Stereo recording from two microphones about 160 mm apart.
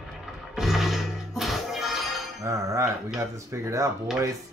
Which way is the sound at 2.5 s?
20° right (ahead or behind).